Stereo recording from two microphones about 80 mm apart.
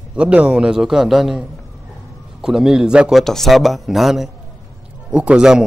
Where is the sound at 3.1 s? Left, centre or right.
Centre.